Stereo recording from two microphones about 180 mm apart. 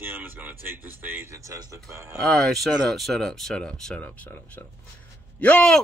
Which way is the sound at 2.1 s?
Centre (ahead or behind).